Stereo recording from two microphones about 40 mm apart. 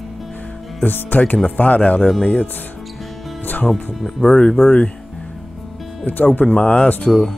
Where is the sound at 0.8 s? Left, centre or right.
Left.